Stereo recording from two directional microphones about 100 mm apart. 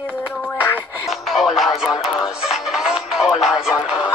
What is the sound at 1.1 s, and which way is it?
Music, centre (ahead or behind).